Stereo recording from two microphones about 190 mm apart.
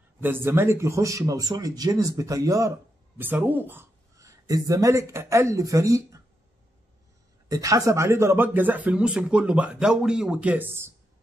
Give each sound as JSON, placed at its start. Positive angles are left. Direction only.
{"t": 0.2, "sound": "speech", "side_deg": -10}
{"t": 7.4, "sound": "speech", "side_deg": -20}